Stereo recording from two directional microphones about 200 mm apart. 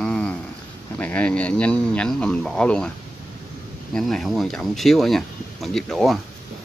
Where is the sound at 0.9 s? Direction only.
5° left (ahead or behind).